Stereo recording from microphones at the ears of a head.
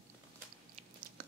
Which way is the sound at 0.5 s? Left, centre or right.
Right.